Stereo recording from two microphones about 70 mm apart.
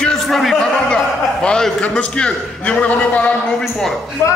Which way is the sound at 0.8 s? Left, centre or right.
Centre.